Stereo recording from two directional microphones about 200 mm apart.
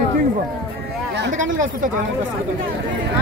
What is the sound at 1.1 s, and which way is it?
Speech, 65° right (ahead or behind).